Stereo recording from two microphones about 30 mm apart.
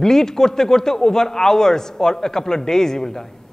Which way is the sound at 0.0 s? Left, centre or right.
Centre.